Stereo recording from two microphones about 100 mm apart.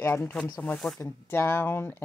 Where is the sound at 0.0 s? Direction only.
25° left (ahead or behind).